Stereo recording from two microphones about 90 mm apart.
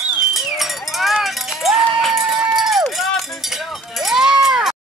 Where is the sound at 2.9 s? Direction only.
Centre (ahead or behind).